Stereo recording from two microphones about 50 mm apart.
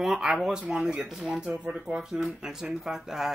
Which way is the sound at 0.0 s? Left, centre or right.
Centre.